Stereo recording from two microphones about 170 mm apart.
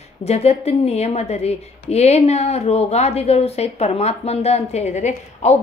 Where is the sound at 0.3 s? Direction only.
35° left (ahead or behind).